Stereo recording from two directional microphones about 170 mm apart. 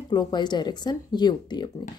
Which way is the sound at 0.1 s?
25° left (ahead or behind).